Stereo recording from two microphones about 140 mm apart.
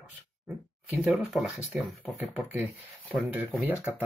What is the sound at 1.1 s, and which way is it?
Speech, centre (ahead or behind).